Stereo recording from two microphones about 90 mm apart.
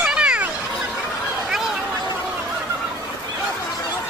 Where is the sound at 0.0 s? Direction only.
10° right (ahead or behind).